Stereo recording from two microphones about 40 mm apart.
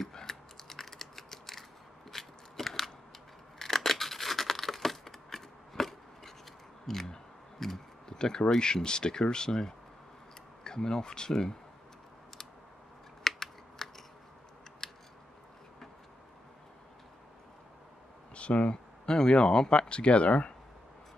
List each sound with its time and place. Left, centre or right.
0.1 s typing: centre
2.0 s biting: centre
3.5 s scissors: centre
6.9 s a sound: centre
7.6 s speech: centre
13.2 s computer keyboard: centre
14.8 s scissors: centre
18.3 s speech: left
19.0 s speech: centre